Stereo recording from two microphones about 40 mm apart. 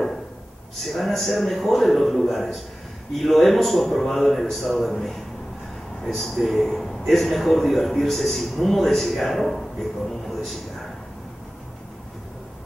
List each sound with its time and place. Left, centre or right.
0.7 s a man's voice: centre